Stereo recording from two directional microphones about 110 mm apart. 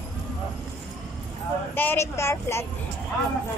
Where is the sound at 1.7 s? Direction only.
20° left (ahead or behind).